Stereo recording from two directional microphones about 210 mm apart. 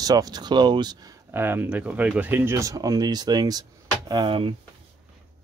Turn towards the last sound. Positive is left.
turn(degrees=-25)  # may be behind; listen again after turning